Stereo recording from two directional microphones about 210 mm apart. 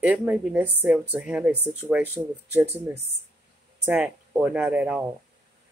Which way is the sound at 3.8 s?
10° right (ahead or behind).